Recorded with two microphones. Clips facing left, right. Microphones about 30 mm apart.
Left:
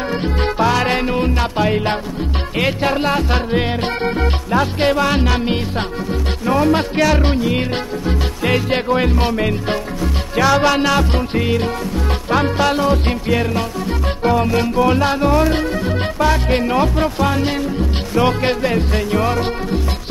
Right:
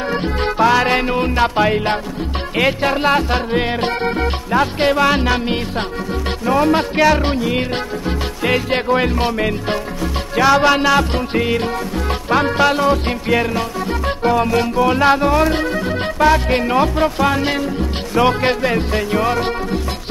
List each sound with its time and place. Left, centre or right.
0.1 s music: centre
15.0 s music: centre
18.8 s music: centre
19.2 s music: centre